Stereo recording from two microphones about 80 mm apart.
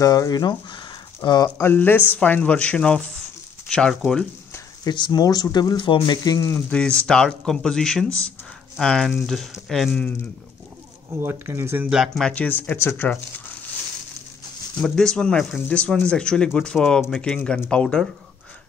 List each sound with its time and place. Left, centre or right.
0.0 s speech: left
1.6 s speech: left; by 4.3 s centre
4.8 s speech: left
5.2 s speech: left
6.2 s speech: left
6.7 s speech: centre
11.1 s speech: right
12.2 s speech: centre
14.8 s speech: centre